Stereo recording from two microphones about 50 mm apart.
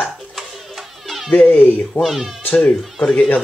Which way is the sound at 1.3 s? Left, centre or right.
Left.